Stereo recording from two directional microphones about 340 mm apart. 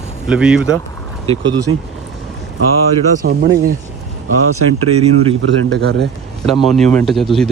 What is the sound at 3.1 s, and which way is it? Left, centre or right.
Speech, right.